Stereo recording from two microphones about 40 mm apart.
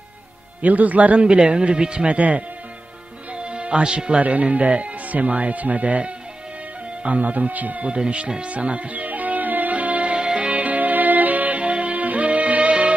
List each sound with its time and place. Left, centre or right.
0.6 s speech: right
1.2 s speech: right
2.1 s speech: right
3.3 s music: right
4.2 s speech: right
7.8 s speech: right
8.5 s music: right
10.1 s music: right